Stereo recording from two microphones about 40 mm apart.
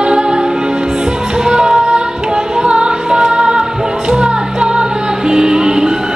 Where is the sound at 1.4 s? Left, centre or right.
Centre.